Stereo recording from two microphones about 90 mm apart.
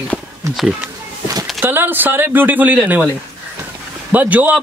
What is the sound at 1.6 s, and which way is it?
Speech, 25° right (ahead or behind).